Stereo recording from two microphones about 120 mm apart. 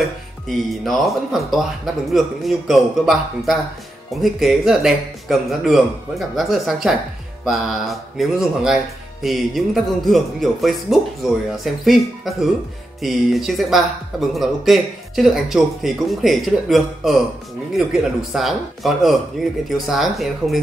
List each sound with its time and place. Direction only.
0.5 s speech: centre (ahead or behind)
18.3 s speech: centre (ahead or behind)